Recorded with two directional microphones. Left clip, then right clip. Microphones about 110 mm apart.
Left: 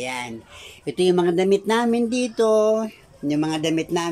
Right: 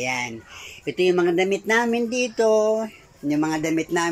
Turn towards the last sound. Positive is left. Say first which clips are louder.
# even
turn(degrees=20)  # may be behind; listen again after turning